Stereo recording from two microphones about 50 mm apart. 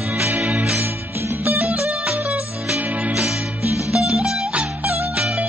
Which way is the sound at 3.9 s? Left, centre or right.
Centre.